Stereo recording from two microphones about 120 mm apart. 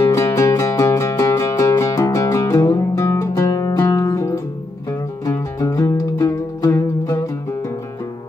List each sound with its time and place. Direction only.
0.0 s music: 25° left (ahead or behind)